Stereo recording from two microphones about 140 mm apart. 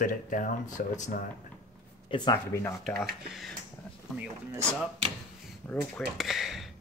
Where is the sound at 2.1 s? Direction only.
35° left (ahead or behind).